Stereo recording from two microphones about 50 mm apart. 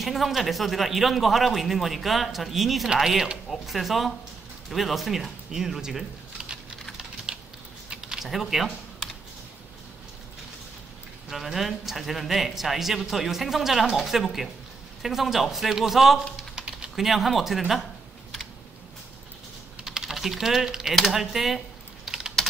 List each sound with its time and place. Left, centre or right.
0.0 s speech: centre
7.3 s typing: centre
7.9 s a sound: centre
11.2 s a man's voice: centre
16.5 s typing: centre
16.9 s speech: centre
19.8 s typing: centre
20.9 s speech: centre
22.0 s typing: centre